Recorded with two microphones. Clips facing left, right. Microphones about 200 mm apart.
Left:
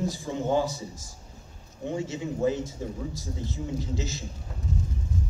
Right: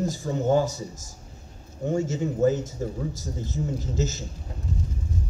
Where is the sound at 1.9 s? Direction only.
45° right (ahead or behind).